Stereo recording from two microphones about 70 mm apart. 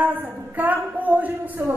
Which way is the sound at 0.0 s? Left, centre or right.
Right.